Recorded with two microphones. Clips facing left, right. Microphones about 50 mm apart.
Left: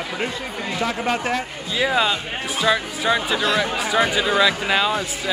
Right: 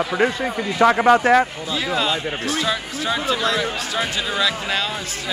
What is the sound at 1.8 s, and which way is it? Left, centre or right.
Speech, centre.